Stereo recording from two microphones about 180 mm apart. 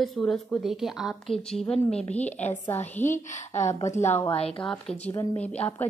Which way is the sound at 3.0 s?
45° left (ahead or behind).